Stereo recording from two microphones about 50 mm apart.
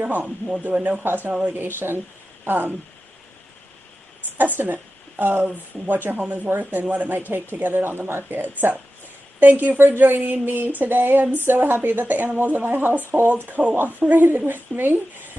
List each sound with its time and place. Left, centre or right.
0.0 s speech: right
1.0 s speech: right
5.2 s speech: right